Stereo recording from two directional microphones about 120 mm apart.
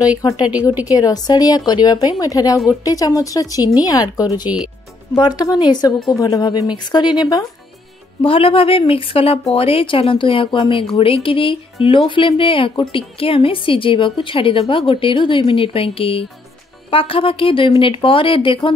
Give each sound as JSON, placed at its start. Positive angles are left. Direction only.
{"t": 0.2, "sound": "speech", "side_deg": 35}
{"t": 8.2, "sound": "speech", "side_deg": 50}